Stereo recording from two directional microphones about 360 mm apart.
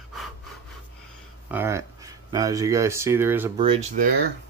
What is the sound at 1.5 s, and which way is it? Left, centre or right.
Speech, centre.